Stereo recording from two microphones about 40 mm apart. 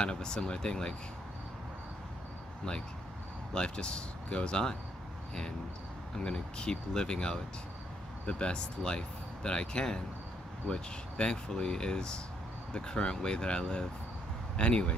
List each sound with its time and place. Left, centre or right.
0.0 s speech: centre
3.5 s speech: left
6.1 s speech: centre